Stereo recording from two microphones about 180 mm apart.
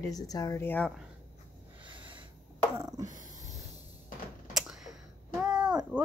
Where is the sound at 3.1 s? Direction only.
45° right (ahead or behind).